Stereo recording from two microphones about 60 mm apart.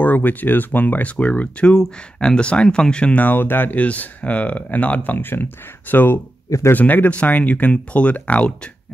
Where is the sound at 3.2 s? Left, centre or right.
Left.